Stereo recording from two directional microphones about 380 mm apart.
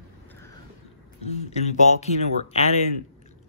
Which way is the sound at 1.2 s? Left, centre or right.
Centre.